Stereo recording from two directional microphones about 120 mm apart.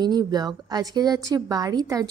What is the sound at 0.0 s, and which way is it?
A woman's voice, 35° right (ahead or behind).